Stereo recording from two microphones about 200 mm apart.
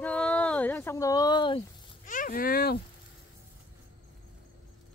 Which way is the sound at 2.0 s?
40° left (ahead or behind).